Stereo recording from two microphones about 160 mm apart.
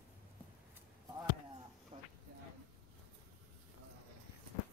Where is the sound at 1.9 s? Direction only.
40° right (ahead or behind).